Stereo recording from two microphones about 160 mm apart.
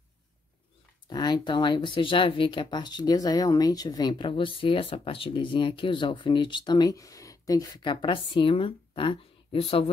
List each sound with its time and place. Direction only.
1.0 s speech: 25° left (ahead or behind)